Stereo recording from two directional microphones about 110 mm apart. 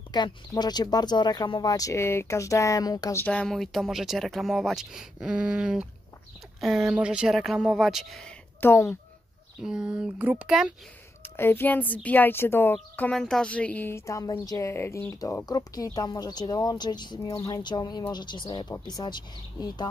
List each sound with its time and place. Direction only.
0.1 s speech: 40° left (ahead or behind)
3.2 s speech: 10° left (ahead or behind)
8.5 s a woman's voice: 20° left (ahead or behind)
9.6 s speech: 5° right (ahead or behind)
11.2 s a woman's voice: 20° left (ahead or behind)
13.1 s a woman's voice: 5° left (ahead or behind); by 19.1 s 35° left (ahead or behind)